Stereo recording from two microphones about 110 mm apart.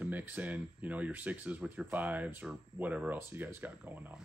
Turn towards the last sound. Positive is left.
turn(degrees=-20)  # may be behind; listen again after turning